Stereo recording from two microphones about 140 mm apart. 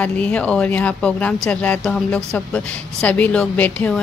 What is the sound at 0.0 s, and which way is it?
Speech, 10° left (ahead or behind).